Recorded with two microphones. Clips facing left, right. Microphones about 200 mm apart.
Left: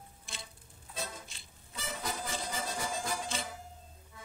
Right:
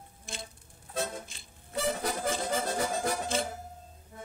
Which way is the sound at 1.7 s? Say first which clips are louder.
Right 9 dB; 65° right (ahead or behind).